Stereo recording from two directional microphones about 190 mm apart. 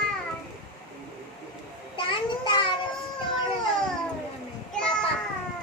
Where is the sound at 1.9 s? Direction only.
25° left (ahead or behind).